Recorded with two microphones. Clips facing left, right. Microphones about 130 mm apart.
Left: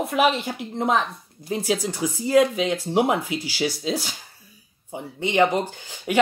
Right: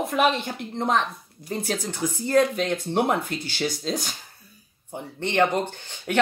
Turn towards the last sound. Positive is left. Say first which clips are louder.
# left 2 dB
turn(degrees=10)  # may be behind; listen again after turning